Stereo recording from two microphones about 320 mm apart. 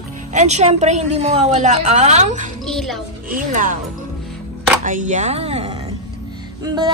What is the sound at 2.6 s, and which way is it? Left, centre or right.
Speech, centre.